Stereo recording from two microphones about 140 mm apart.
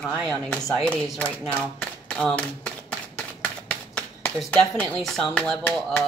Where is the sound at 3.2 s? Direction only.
10° left (ahead or behind).